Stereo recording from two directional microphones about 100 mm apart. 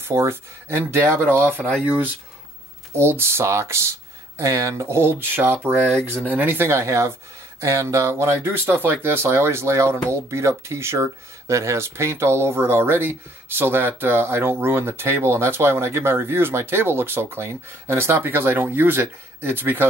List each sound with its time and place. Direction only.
0.0 s speech: 25° right (ahead or behind)